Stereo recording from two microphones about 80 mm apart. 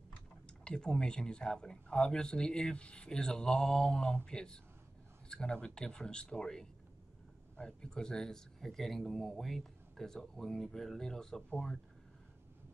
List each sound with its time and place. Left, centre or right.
0.7 s a man's voice: centre